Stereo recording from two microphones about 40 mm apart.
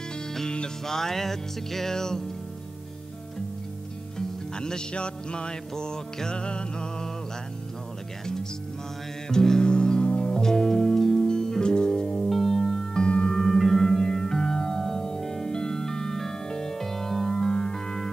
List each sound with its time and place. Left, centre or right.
0.8 s music: centre
4.6 s music: centre
9.3 s music: centre
10.3 s music: centre
13.1 s singing bowl: left
13.4 s music: centre